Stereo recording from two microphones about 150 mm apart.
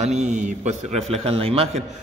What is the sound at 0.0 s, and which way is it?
A man's voice, 50° right (ahead or behind).